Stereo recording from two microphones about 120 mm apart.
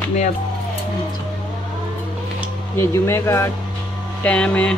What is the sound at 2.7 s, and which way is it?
Speech, 20° left (ahead or behind).